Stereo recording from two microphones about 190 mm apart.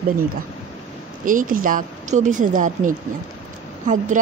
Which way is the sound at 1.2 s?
45° right (ahead or behind).